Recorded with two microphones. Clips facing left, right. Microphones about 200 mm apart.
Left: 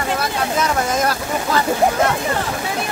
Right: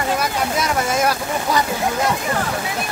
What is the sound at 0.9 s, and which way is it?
Speech, 10° right (ahead or behind).